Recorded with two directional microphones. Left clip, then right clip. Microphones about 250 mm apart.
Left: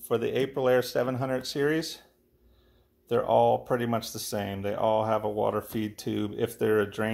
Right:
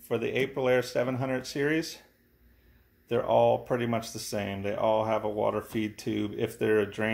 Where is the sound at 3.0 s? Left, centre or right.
Left.